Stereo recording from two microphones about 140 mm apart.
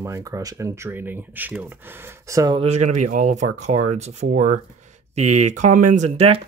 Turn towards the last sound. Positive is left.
turn(degrees=-45)  # may be behind; listen again after turning